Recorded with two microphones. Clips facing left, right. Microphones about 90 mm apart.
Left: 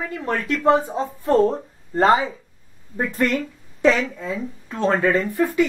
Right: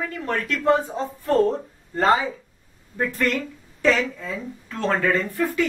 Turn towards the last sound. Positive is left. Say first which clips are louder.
# left 3 dB
turn(degrees=15)  # may be behind; listen again after turning